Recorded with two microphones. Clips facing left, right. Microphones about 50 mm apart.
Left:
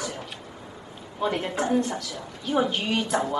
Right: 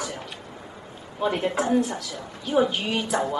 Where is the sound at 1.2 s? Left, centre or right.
Centre.